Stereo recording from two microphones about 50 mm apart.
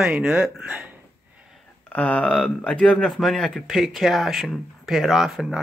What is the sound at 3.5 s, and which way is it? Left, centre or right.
Speech, centre.